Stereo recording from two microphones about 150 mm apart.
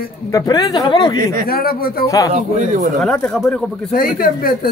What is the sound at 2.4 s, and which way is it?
Speech, 55° right (ahead or behind).